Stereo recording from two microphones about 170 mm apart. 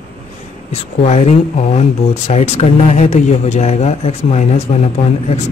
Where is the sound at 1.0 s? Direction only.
40° left (ahead or behind).